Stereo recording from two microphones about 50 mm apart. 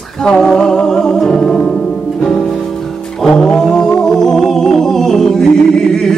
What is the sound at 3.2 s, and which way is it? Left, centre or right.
A capella, centre.